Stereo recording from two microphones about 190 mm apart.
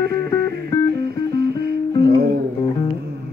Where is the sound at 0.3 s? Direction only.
15° left (ahead or behind).